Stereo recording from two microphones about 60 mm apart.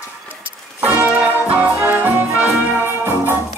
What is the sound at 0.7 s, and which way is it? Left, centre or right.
Brass instrument, right.